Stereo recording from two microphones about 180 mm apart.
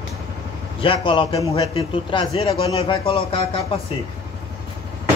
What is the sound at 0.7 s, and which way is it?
A man's voice, 30° left (ahead or behind).